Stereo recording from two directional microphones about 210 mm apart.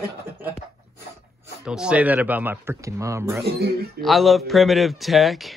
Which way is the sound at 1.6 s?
5° right (ahead or behind).